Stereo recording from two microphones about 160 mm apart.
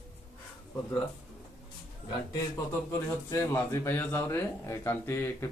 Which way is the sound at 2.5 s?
20° left (ahead or behind).